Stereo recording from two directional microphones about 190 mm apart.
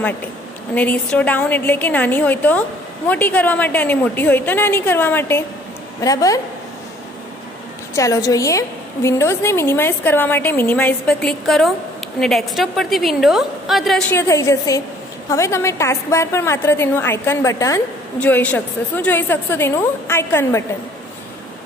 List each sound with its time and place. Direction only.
0.7 s a woman's voice: 5° left (ahead or behind)
7.9 s a woman's voice: 15° left (ahead or behind); by 14.0 s centre (ahead or behind)
14.1 s a woman's voice: 15° left (ahead or behind)